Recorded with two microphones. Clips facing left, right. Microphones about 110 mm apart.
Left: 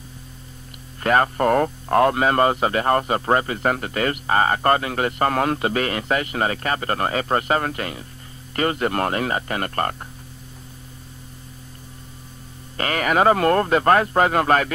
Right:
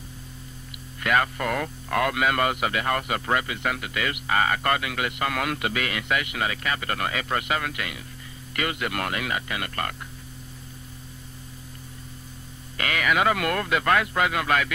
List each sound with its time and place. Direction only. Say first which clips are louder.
1.0 s a man's voice: left 6 dB; 40° left (ahead or behind)
12.7 s a man's voice: left 4 dB; 40° left (ahead or behind)